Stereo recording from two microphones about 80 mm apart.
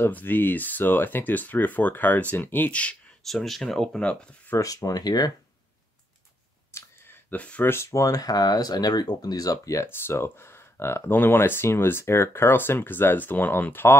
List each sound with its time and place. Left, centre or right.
0.0 s speech: left
3.3 s speech: centre
4.6 s speech: left
6.7 s clicking: left
7.7 s speech: left
9.8 s speech: left